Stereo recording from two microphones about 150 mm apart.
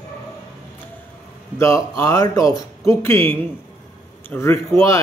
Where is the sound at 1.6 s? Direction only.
20° left (ahead or behind).